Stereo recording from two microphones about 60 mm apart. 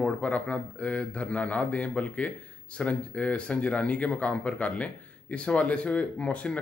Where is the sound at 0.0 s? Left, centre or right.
Left.